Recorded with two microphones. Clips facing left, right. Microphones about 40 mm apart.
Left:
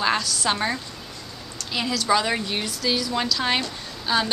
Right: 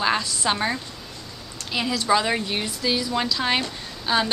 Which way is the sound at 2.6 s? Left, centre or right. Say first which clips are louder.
Even; centre.